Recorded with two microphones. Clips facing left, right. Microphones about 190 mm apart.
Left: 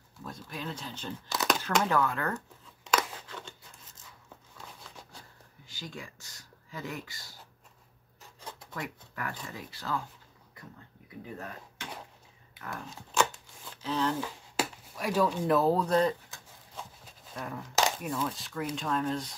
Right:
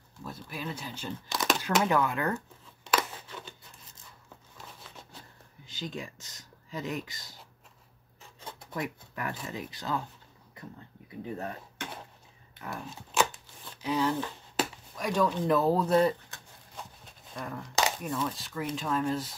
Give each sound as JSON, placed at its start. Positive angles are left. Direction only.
{"t": 0.2, "sound": "speech", "side_deg": -5}
{"t": 1.3, "sound": "crumpling", "side_deg": 5}
{"t": 1.8, "sound": "speech", "side_deg": -15}
{"t": 2.9, "sound": "scissors", "side_deg": -10}
{"t": 4.6, "sound": "a sound", "side_deg": -5}
{"t": 5.7, "sound": "speech", "side_deg": -20}
{"t": 8.7, "sound": "speech", "side_deg": -20}
{"t": 12.5, "sound": "a sound", "side_deg": -10}
{"t": 13.8, "sound": "speech", "side_deg": -10}
{"t": 14.1, "sound": "speech", "side_deg": 10}
{"t": 17.0, "sound": "a sound", "side_deg": 5}
{"t": 18.0, "sound": "speech", "side_deg": 0}